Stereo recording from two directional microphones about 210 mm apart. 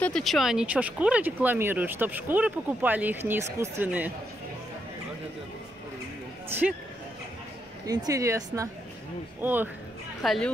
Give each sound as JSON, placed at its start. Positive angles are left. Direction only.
{"t": 0.0, "sound": "speech", "side_deg": 0}
{"t": 7.8, "sound": "speech", "side_deg": -15}